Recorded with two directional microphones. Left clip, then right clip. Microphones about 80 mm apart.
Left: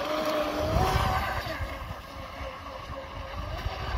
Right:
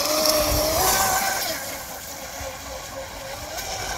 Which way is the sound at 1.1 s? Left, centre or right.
Centre.